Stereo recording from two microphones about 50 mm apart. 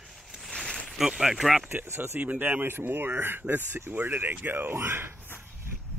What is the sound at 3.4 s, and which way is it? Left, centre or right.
Speech, right.